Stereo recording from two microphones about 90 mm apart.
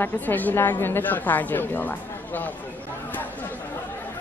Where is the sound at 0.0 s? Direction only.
20° left (ahead or behind).